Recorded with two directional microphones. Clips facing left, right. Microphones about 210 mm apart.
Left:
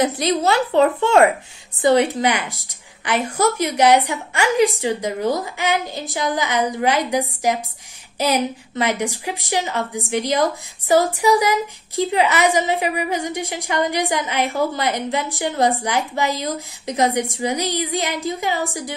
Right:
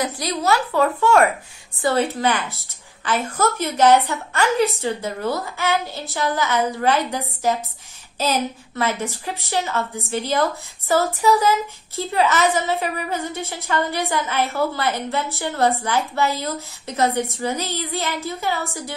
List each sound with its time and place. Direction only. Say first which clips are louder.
0.0 s a child's voice: left 5 dB; 25° left (ahead or behind)